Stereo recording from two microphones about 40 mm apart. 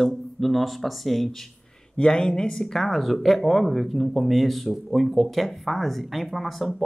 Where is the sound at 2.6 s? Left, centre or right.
Centre.